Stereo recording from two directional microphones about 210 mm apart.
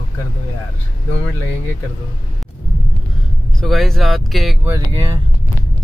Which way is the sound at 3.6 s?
Centre (ahead or behind).